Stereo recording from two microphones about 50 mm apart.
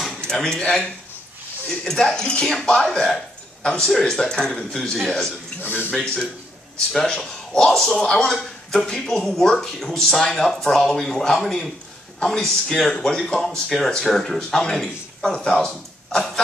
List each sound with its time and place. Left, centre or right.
0.3 s speech: centre
4.9 s a man's voice: centre
5.6 s a man's voice: left
6.9 s speech: centre